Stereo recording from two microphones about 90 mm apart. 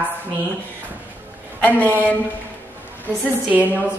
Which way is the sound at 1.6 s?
20° left (ahead or behind).